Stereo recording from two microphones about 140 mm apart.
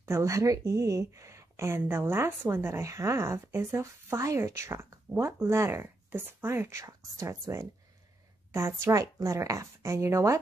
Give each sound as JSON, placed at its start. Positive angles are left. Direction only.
{"t": 0.0, "sound": "speech", "side_deg": -20}